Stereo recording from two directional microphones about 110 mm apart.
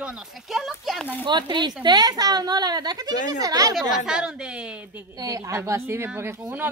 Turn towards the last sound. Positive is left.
turn(degrees=-20)  # may be behind; listen again after turning